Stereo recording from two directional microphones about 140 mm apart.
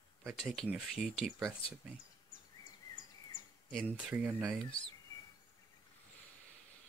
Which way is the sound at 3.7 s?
5° right (ahead or behind).